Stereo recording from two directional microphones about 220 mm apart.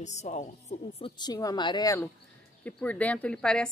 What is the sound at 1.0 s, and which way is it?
A woman's voice, 20° left (ahead or behind).